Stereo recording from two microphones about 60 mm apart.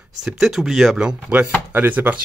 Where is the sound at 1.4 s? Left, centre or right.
Right.